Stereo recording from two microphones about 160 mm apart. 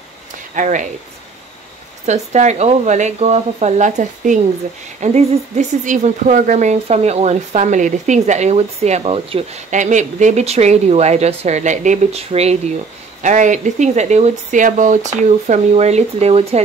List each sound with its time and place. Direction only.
0.6 s a woman's voice: 50° right (ahead or behind)
2.0 s a woman's voice: 45° right (ahead or behind)
13.2 s a woman's voice: 50° right (ahead or behind)